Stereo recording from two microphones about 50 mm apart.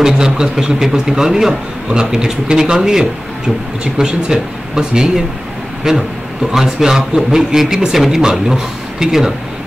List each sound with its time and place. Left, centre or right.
0.0 s a man's voice: centre